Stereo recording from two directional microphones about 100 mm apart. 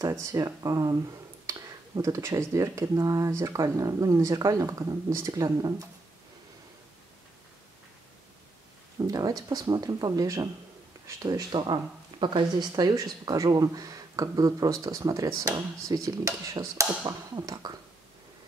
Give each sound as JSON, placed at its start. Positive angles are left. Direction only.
{"t": 0.1, "sound": "speech", "side_deg": -35}
{"t": 9.0, "sound": "speech", "side_deg": -40}